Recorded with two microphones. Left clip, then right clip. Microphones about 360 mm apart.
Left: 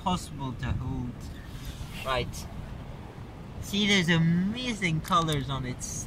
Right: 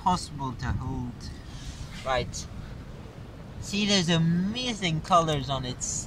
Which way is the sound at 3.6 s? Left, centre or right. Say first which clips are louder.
Left 1 dB; centre.